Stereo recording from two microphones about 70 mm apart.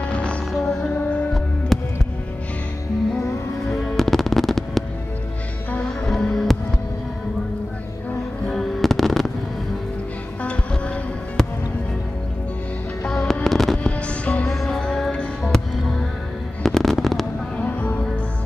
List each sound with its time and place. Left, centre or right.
0.0 s music: centre
0.5 s music: centre
3.6 s music: centre
5.9 s music: centre
8.5 s fireworks: centre
10.4 s music: centre
13.1 s fireworks: centre
13.8 s music: centre
14.5 s music: centre
16.6 s fireworks: centre
17.6 s music: left